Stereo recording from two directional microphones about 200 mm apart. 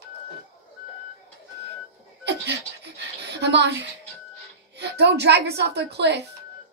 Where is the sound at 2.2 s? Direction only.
55° right (ahead or behind).